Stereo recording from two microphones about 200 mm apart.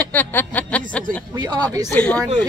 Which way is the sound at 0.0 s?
10° left (ahead or behind).